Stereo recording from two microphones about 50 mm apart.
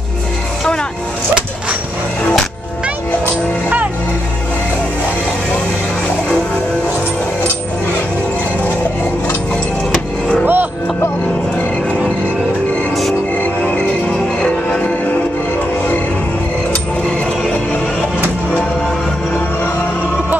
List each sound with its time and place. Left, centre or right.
10.4 s music: right
14.4 s music: left